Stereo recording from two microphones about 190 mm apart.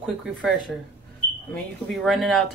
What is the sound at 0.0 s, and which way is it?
Speech, centre (ahead or behind).